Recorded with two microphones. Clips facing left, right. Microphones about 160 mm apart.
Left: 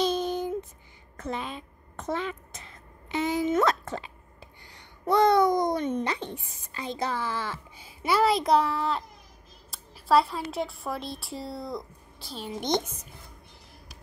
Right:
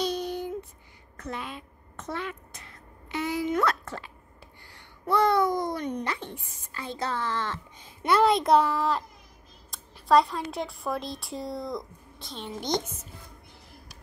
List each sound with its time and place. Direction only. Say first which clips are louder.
0.0 s a sound: left 3 dB; 25° left (ahead or behind)
1.1 s a woman's voice: left 3 dB; 25° left (ahead or behind); by 12.5 s 5° left (ahead or behind)
12.5 s a woman's voice: left 2 dB; 20° left (ahead or behind)